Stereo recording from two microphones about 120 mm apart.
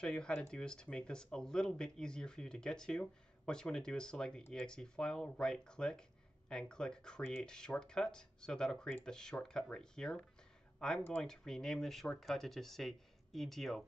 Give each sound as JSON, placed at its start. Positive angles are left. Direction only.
{"t": 0.0, "sound": "speech", "side_deg": 5}